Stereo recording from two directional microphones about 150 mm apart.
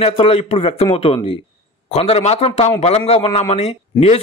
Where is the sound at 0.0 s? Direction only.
40° left (ahead or behind).